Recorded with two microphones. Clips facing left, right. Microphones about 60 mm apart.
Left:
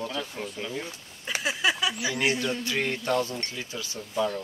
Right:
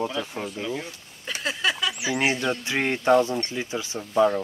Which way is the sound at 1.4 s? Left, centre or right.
Centre.